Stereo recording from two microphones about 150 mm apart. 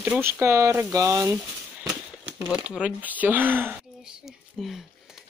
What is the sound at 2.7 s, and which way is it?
A woman's voice, 10° right (ahead or behind).